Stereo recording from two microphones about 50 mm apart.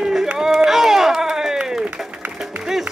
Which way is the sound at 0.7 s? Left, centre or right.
Centre.